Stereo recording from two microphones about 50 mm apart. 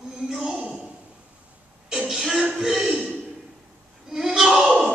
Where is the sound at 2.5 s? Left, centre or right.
Centre.